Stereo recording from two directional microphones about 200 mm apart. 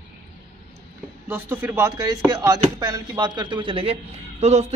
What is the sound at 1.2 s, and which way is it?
Speech, 10° right (ahead or behind).